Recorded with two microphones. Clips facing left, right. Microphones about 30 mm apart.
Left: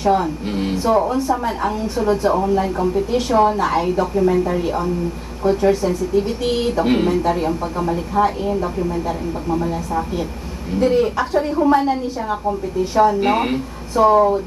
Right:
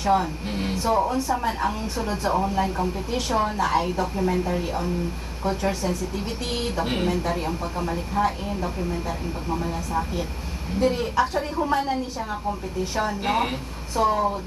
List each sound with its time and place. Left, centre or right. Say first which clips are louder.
0.0 s speech: left 5 dB; centre